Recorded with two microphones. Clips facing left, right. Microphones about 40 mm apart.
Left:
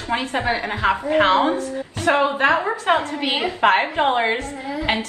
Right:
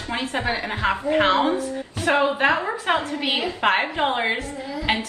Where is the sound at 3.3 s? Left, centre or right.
Left.